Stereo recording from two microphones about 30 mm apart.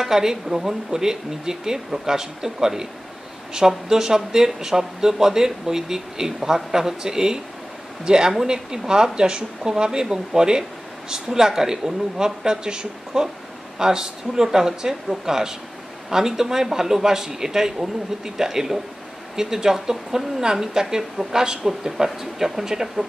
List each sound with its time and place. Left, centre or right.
0.0 s a man's voice: centre